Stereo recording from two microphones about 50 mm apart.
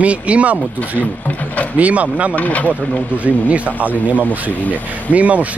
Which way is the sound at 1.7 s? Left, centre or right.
Right.